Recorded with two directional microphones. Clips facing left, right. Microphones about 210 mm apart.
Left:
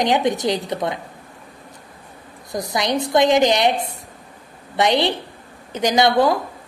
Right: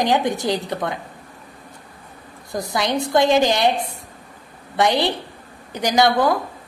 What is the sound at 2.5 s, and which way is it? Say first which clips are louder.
A woman's voice: left 1 dB; 20° left (ahead or behind).